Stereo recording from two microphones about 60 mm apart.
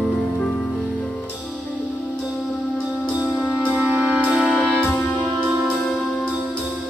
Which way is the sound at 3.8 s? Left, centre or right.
Right.